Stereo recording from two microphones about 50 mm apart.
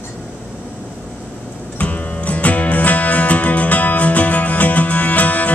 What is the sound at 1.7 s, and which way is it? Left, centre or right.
Music, left.